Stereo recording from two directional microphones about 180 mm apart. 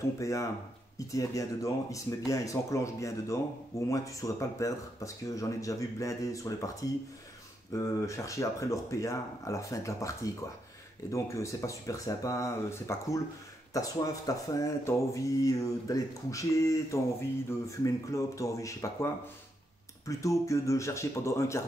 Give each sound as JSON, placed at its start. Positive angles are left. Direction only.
{"t": 0.2, "sound": "speech", "side_deg": 15}
{"t": 20.1, "sound": "speech", "side_deg": 15}